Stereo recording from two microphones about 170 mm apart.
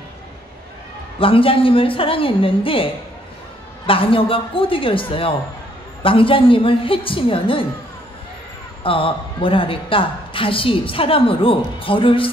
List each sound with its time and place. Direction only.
1.2 s a man's voice: 30° left (ahead or behind)
8.8 s a man's voice: 30° left (ahead or behind)